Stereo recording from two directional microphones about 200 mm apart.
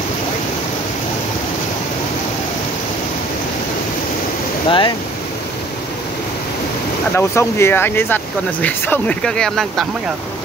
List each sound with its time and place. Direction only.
4.6 s speech: 25° left (ahead or behind)
7.2 s speech: 15° left (ahead or behind)